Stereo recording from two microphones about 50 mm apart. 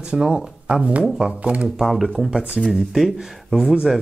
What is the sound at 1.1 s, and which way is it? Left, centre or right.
Speech, centre.